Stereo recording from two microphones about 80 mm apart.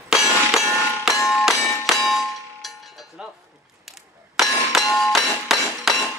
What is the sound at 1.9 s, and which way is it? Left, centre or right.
Clang, centre.